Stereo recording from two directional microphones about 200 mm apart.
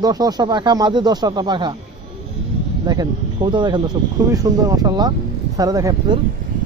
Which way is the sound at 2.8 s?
20° right (ahead or behind).